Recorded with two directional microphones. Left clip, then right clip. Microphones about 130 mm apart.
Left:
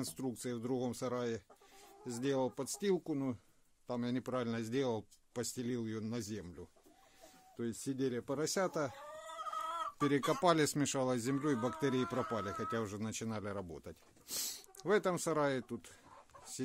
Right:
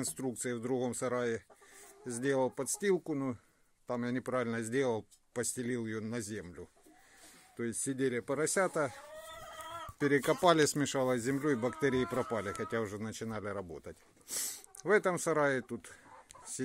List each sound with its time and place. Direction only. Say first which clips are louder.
0.0 s speech: right 4 dB; 5° left (ahead or behind)
7.5 s speech: right 3 dB; centre (ahead or behind)
9.9 s speech: right 5 dB; 15° left (ahead or behind)